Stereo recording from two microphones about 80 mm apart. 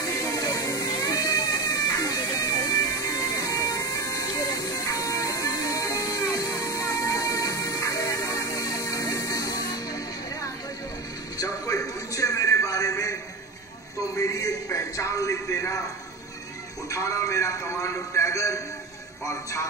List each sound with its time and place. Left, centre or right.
0.0 s music: left
11.3 s a sound: left
16.9 s a man's voice: left